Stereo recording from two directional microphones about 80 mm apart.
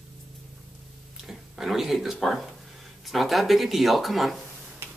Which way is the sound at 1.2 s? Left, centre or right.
Centre.